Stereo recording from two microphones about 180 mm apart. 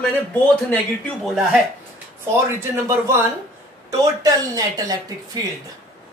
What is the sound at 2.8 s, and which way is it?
Speech, 15° right (ahead or behind).